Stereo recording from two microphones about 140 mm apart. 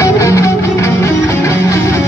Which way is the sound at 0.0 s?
20° left (ahead or behind).